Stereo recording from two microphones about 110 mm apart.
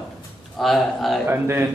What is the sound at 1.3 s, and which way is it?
Speech, 20° right (ahead or behind).